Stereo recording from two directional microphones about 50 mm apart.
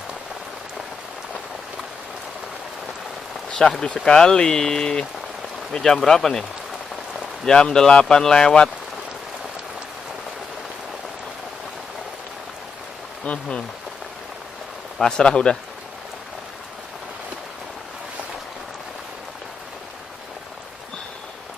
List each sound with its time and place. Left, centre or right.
3.4 s run: centre
3.8 s speech: centre
7.4 s speech: centre
13.2 s speech: left
15.0 s speech: centre